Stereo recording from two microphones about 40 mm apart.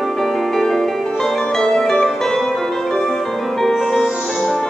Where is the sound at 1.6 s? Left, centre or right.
Centre.